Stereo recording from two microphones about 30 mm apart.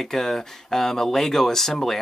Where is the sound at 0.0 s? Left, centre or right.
Centre.